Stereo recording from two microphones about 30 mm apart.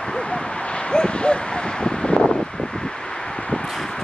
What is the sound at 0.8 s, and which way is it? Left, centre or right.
Dog, left.